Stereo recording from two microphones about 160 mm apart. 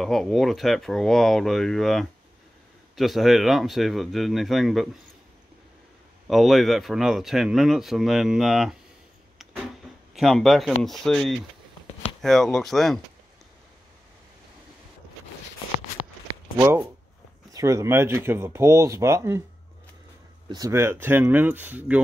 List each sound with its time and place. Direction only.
0.0 s speech: centre (ahead or behind)
6.2 s speech: centre (ahead or behind)
9.4 s vehicle: centre (ahead or behind)
10.1 s speech: centre (ahead or behind)
16.5 s speech: 15° right (ahead or behind)
20.4 s speech: 20° right (ahead or behind)